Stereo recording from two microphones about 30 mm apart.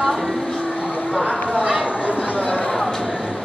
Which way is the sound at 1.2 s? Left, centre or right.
Right.